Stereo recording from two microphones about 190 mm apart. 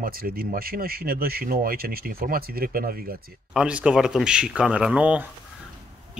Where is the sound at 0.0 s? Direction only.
50° right (ahead or behind).